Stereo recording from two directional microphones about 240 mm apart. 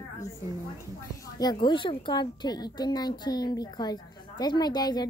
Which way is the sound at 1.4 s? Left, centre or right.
Centre.